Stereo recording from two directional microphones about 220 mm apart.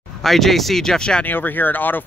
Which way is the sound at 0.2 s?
Centre (ahead or behind).